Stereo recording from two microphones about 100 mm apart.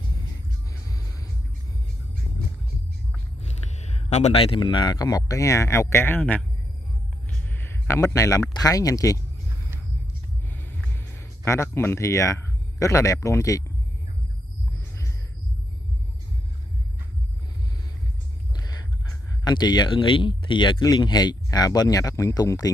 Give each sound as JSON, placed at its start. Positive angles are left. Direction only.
{"t": 0.8, "sound": "music", "side_deg": 35}
{"t": 4.1, "sound": "speech", "side_deg": 75}
{"t": 7.4, "sound": "a sound", "side_deg": 20}
{"t": 7.9, "sound": "speech", "side_deg": 30}
{"t": 10.5, "sound": "music", "side_deg": 20}
{"t": 11.1, "sound": "speech", "side_deg": 25}
{"t": 14.8, "sound": "a sound", "side_deg": 30}
{"t": 18.6, "sound": "a sound", "side_deg": 40}
{"t": 19.4, "sound": "speech", "side_deg": 45}